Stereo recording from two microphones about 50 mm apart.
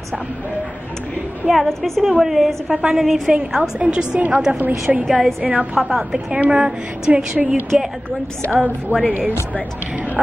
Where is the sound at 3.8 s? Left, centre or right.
Right.